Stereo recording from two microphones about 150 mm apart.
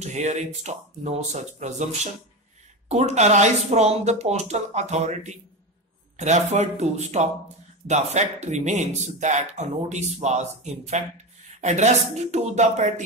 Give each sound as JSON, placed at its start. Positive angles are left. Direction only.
{"t": 0.0, "sound": "speech", "side_deg": -50}
{"t": 2.9, "sound": "speech", "side_deg": -50}